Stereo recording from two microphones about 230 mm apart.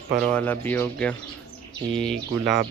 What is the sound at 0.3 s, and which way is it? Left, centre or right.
Speech, centre.